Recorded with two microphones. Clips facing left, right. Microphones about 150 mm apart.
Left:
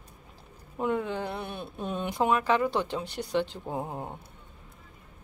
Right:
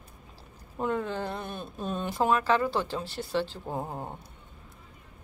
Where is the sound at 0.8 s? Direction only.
15° left (ahead or behind).